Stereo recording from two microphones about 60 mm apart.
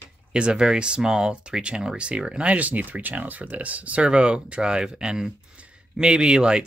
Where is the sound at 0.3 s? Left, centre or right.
Centre.